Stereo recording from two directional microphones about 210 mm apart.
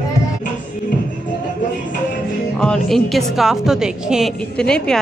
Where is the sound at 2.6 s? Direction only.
5° left (ahead or behind).